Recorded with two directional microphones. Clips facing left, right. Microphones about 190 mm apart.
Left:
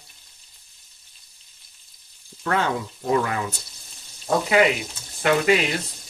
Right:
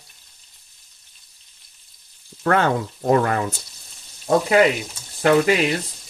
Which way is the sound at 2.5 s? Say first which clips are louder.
Right 5 dB; 55° right (ahead or behind).